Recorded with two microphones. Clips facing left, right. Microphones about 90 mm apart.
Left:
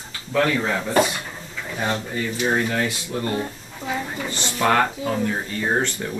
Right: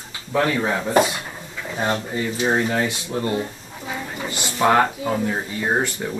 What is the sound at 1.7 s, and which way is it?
Speech, 30° right (ahead or behind).